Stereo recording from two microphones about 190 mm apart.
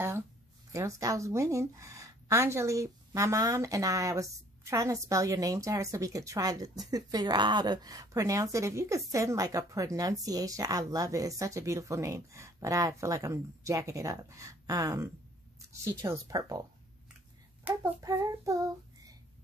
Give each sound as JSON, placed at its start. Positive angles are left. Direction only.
{"t": 0.7, "sound": "a woman's voice", "side_deg": -15}
{"t": 17.6, "sound": "child singing", "side_deg": -15}